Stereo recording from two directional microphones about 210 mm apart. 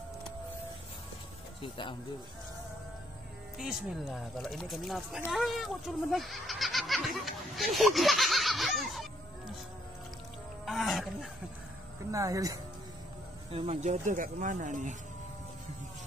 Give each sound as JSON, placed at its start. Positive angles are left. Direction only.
{"t": 1.6, "sound": "speech", "side_deg": 25}
{"t": 3.5, "sound": "speech", "side_deg": 0}
{"t": 10.6, "sound": "speech", "side_deg": 0}
{"t": 12.1, "sound": "speech", "side_deg": -15}
{"t": 13.5, "sound": "speech", "side_deg": -30}